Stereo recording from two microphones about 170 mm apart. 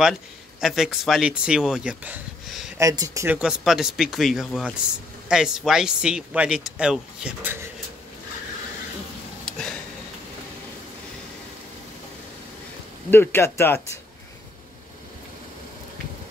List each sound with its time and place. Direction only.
0.6 s speech: centre (ahead or behind)
2.8 s speech: 20° right (ahead or behind)
3.3 s speech: 5° right (ahead or behind)
9.5 s a sound: 5° left (ahead or behind)
13.1 s speech: 10° left (ahead or behind)